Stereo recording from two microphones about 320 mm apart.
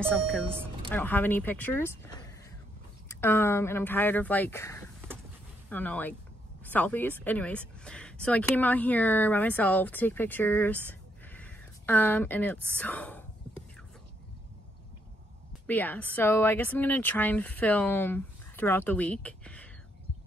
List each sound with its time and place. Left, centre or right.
0.8 s speech: centre
10.9 s a sound: centre
15.6 s speech: centre